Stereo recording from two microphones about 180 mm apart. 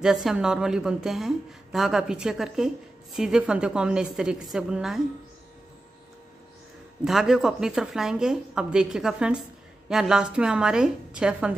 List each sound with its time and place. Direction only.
0.0 s a woman's voice: centre (ahead or behind)
7.1 s a woman's voice: centre (ahead or behind)